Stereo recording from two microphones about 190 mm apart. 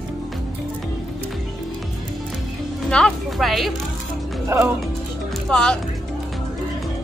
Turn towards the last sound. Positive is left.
turn(degrees=5)  # may be behind; listen again after turning